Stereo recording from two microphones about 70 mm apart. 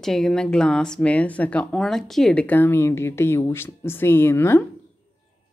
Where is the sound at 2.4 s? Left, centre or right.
Left.